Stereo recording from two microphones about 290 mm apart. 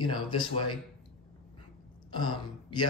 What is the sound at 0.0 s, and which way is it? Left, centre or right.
Speech, centre.